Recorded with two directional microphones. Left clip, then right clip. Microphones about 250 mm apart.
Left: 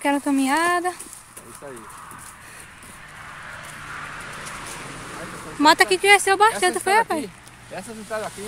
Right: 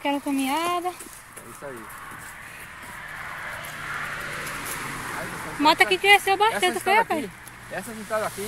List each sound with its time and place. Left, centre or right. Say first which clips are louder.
0.0 s speech: left 4 dB; left
5.6 s speech: left 3 dB; left
7.7 s speech: right 2 dB; centre